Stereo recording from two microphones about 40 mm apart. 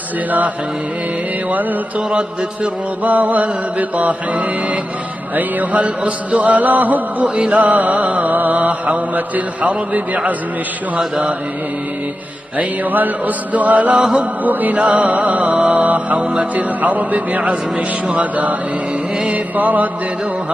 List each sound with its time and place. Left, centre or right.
1.5 s music: right
2.0 s mantra: right
5.3 s music: right
7.2 s mantra: right
11.0 s mantra: right
12.9 s music: right
14.4 s mantra: right
16.5 s music: right
17.4 s mantra: right
19.5 s music: right